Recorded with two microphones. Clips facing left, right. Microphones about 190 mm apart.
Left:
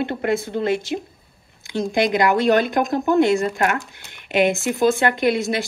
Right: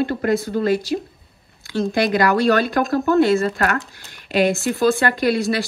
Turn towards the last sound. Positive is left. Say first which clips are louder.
# right 1 dB
turn(degrees=20)  # may be behind; listen again after turning